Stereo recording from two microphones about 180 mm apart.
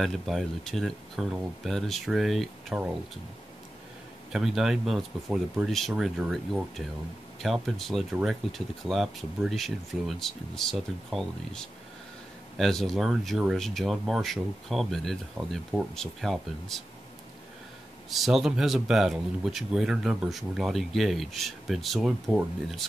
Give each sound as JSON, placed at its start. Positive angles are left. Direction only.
{"t": 0.0, "sound": "speech", "side_deg": 0}
{"t": 4.3, "sound": "speech", "side_deg": 0}
{"t": 18.2, "sound": "speech", "side_deg": 0}